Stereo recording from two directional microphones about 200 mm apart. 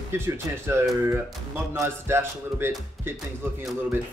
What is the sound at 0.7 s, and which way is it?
Speech, 15° right (ahead or behind).